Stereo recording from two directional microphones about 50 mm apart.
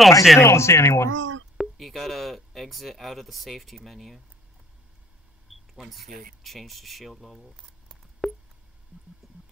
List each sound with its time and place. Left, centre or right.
0.0 s speech: centre
0.4 s speech: left
1.6 s speech: centre
5.5 s a sound: centre
5.9 s speech: centre
9.2 s music: centre